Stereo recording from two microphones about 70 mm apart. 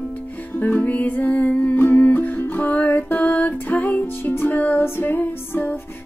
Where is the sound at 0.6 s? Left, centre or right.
Left.